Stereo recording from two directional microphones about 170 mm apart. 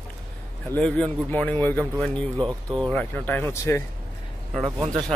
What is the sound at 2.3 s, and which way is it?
Speech, 25° right (ahead or behind).